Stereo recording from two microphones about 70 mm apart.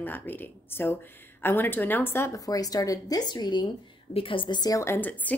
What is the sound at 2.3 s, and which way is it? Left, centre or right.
A woman's voice, left.